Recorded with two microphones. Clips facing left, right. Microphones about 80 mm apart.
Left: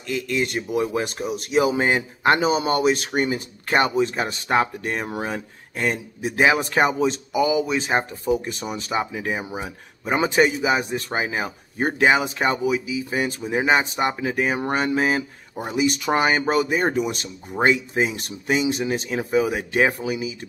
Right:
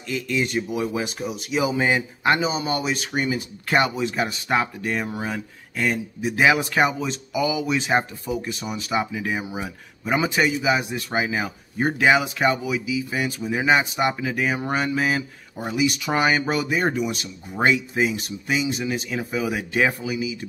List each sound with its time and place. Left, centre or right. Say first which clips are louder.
0.0 s a man's voice: left 1 dB; left
3.6 s speech: left 2 dB; left
18.2 s speech: left 3 dB; left